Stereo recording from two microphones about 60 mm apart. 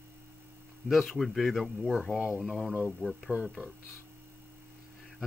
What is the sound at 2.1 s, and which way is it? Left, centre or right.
Speech, centre.